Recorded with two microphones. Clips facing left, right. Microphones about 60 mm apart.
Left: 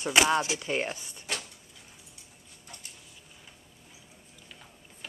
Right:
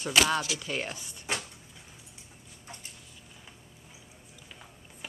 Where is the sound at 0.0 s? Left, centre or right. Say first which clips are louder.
Left 2 dB; left.